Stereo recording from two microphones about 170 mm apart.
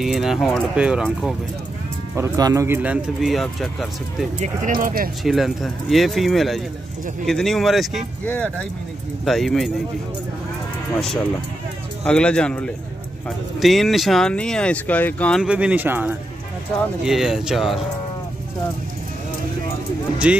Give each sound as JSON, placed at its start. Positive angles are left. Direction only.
{"t": 0.0, "sound": "speech", "side_deg": 0}
{"t": 2.1, "sound": "speech", "side_deg": -20}
{"t": 4.4, "sound": "speech", "side_deg": -50}
{"t": 5.2, "sound": "speech", "side_deg": 0}
{"t": 12.0, "sound": "speech", "side_deg": 5}
{"t": 15.4, "sound": "speech", "side_deg": -5}